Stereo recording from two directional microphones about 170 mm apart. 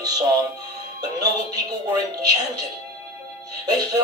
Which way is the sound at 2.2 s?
25° right (ahead or behind).